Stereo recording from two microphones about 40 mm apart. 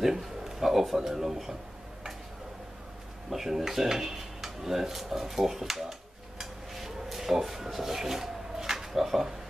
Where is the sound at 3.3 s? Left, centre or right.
Centre.